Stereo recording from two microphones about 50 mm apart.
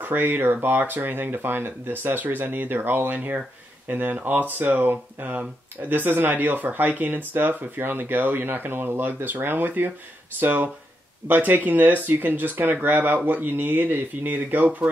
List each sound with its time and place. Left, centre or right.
0.0 s speech: right